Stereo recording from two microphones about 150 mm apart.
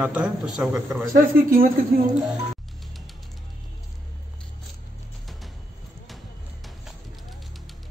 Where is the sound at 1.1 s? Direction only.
65° right (ahead or behind).